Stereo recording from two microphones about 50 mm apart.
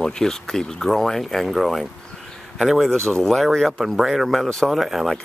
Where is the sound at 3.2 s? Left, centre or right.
Centre.